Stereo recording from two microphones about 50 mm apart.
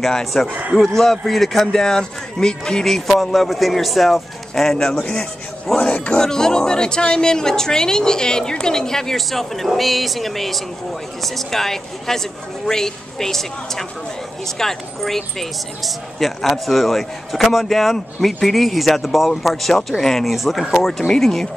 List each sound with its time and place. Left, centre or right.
0.0 s speech: centre
0.5 s speech: right
0.8 s speech: centre
2.8 s speech: centre
5.0 s speech: centre